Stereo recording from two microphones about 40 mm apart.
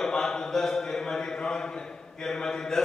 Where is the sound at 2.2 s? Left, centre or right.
Centre.